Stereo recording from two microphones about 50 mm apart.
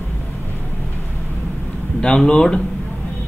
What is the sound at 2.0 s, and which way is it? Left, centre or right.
Speech, centre.